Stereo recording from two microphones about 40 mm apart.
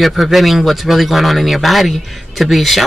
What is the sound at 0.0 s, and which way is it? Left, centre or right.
A man's voice, centre.